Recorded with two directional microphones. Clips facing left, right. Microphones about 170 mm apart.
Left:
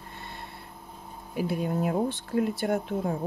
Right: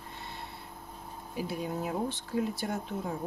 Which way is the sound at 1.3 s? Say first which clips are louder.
Left 6 dB; 60° left (ahead or behind).